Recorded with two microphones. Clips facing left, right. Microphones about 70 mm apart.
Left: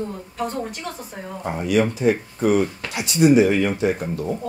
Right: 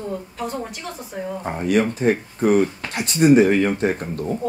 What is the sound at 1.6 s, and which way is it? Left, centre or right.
A woman's voice, right.